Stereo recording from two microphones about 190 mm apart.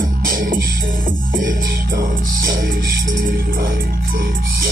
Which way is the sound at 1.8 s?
45° right (ahead or behind).